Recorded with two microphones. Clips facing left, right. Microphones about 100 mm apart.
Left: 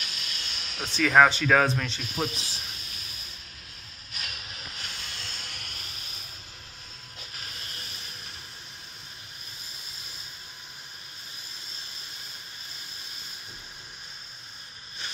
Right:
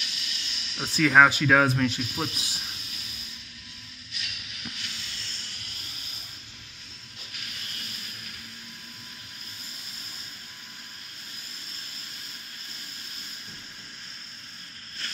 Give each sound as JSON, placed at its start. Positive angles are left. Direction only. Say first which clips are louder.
{"t": 0.0, "sound": "music", "louder": "left 1 dB", "side_deg": 45}
{"t": 0.9, "sound": "speech", "louder": "right 1 dB", "side_deg": 0}
{"t": 4.1, "sound": "music", "louder": "left 2 dB", "side_deg": 40}